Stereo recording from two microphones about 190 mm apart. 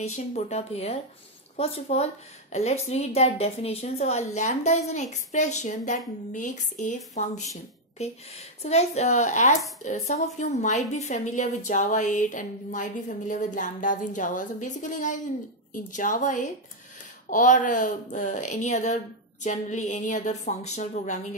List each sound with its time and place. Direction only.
0.0 s a woman's voice: 35° left (ahead or behind)
8.0 s a woman's voice: 35° left (ahead or behind)